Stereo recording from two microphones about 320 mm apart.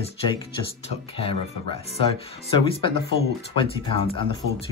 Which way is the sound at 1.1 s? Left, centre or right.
Centre.